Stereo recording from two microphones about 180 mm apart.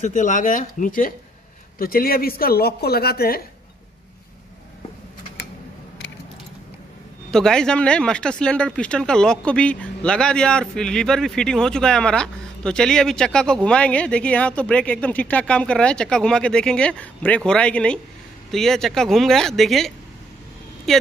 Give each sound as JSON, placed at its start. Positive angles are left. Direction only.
{"t": 0.0, "sound": "speech", "side_deg": 45}
{"t": 7.2, "sound": "speech", "side_deg": 5}